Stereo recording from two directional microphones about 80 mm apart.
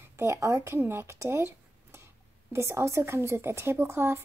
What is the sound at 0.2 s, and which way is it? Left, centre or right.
Speech, right.